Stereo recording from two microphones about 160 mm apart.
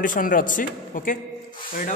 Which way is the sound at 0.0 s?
55° left (ahead or behind).